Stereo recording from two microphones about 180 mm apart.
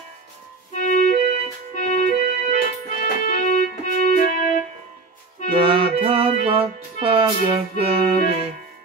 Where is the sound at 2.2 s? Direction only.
55° right (ahead or behind).